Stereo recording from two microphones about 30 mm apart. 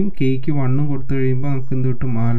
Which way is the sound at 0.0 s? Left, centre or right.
Left.